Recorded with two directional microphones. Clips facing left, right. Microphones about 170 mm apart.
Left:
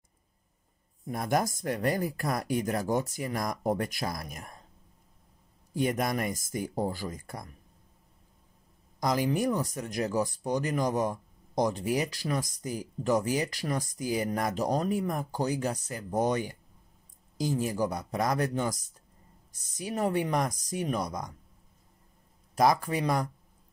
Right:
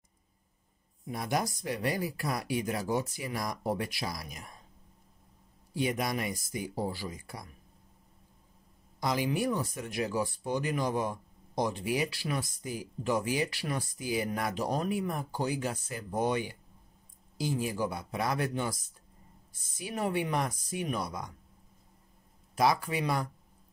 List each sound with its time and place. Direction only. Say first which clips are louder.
1.0 s speech: left 4 dB; 45° left (ahead or behind)
5.7 s speech: left 3 dB; 50° left (ahead or behind)
9.0 s speech: left 3 dB; 40° left (ahead or behind)
19.8 s speech: left 3 dB; 40° left (ahead or behind)
22.6 s speech: left 3 dB; 45° left (ahead or behind)